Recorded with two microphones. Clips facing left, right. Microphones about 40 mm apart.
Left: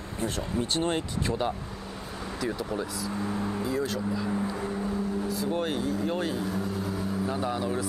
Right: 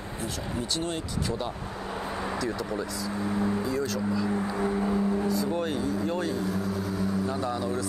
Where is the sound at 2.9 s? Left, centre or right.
Centre.